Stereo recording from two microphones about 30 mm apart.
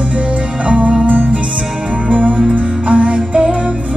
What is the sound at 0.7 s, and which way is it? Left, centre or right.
Music, right.